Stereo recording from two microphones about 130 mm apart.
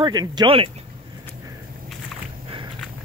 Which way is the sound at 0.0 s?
35° right (ahead or behind).